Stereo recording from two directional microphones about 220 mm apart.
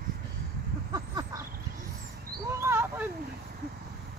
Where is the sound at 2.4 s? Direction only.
10° right (ahead or behind).